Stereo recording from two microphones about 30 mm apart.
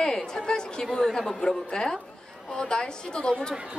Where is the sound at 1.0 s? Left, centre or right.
Centre.